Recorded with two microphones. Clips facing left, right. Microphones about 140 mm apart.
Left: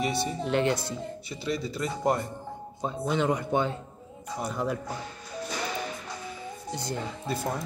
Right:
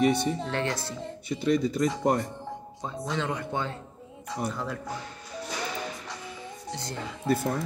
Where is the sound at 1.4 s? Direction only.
50° right (ahead or behind).